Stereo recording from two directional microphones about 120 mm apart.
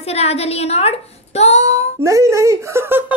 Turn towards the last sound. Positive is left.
turn(degrees=-20)  # may be behind; listen again after turning